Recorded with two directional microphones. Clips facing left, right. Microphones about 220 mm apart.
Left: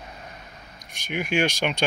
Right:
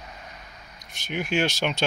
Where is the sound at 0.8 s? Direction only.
45° left (ahead or behind).